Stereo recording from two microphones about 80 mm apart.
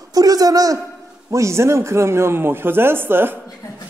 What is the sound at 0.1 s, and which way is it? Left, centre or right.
Speech, right.